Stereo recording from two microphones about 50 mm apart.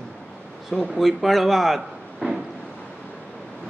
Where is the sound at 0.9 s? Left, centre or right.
Centre.